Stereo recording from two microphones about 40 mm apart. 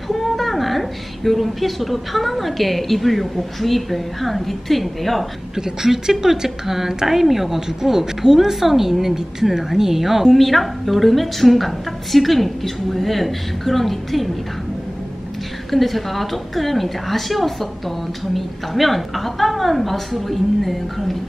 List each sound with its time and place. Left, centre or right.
0.1 s a woman's voice: centre
5.6 s a woman's voice: centre
15.7 s a woman's voice: centre